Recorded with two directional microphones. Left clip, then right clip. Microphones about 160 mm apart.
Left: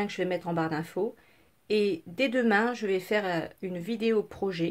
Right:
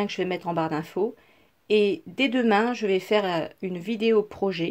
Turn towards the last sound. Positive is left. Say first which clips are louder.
# right 5 dB
turn(degrees=-30)  # may be behind; listen again after turning